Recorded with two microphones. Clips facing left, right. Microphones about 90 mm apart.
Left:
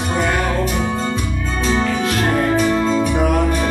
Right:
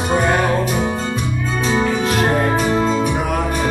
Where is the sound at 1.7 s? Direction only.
15° right (ahead or behind).